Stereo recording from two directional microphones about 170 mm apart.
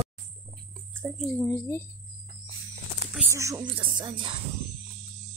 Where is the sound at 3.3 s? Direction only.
20° right (ahead or behind).